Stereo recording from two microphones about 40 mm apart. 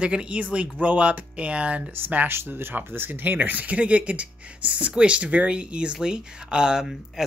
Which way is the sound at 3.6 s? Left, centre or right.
Right.